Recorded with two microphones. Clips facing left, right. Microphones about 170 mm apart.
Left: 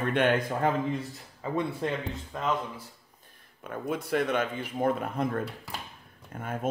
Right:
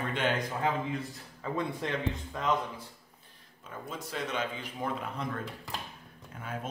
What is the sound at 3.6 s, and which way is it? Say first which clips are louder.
A man's voice: left 8 dB; 60° left (ahead or behind).